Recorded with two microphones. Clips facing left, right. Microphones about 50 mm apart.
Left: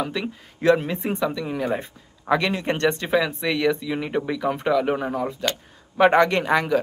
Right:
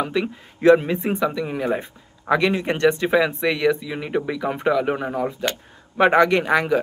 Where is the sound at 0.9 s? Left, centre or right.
Right.